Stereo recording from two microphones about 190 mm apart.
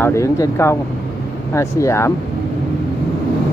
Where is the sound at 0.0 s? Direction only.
15° left (ahead or behind).